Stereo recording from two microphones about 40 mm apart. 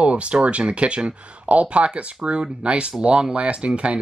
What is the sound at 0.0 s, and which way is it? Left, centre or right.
Speech, right.